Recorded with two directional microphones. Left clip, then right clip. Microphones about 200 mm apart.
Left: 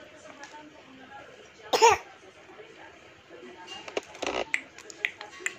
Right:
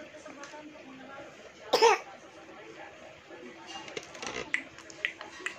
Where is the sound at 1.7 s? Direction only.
10° left (ahead or behind).